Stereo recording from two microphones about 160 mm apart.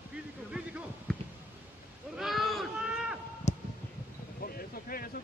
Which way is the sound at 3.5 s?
45° left (ahead or behind).